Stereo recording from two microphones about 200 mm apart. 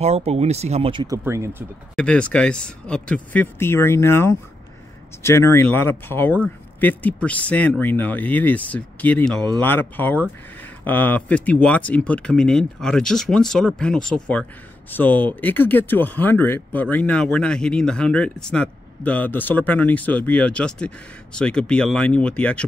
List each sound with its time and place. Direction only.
0.0 s speech: 30° right (ahead or behind)
1.0 s speech: 15° right (ahead or behind)
2.0 s speech: 5° left (ahead or behind)